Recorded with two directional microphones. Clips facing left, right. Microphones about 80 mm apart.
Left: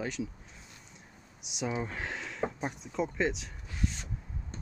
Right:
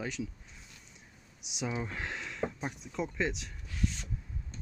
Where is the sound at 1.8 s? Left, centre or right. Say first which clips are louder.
Left 2 dB; centre.